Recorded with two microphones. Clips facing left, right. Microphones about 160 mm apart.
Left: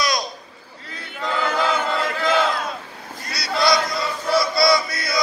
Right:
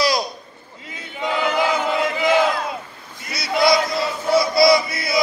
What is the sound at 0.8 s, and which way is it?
Battle cry, 20° right (ahead or behind).